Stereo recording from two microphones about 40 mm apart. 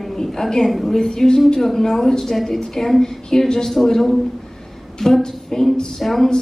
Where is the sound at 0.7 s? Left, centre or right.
Centre.